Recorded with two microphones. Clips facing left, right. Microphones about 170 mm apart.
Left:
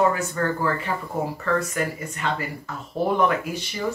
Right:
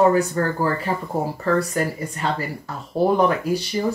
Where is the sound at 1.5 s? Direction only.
35° right (ahead or behind).